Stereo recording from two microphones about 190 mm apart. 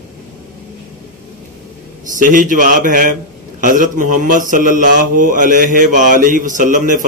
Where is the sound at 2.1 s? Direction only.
45° right (ahead or behind).